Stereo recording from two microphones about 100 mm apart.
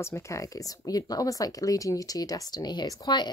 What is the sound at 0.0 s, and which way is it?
Speech, 30° left (ahead or behind).